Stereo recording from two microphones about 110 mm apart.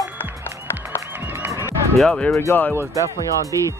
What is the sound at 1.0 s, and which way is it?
Music, 20° right (ahead or behind).